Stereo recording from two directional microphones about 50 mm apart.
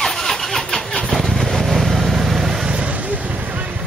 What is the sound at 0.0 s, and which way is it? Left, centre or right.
Vehicle, centre.